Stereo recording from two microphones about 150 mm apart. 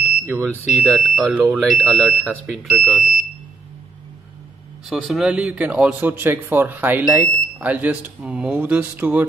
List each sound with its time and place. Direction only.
0.0 s smoke detector: 10° right (ahead or behind)
0.8 s speech: centre (ahead or behind)
3.0 s smoke detector: 55° left (ahead or behind)
4.8 s speech: centre (ahead or behind)